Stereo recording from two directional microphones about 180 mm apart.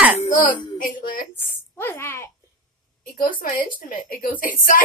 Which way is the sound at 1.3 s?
10° left (ahead or behind).